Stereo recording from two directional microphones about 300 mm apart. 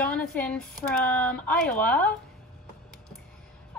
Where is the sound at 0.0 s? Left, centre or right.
Centre.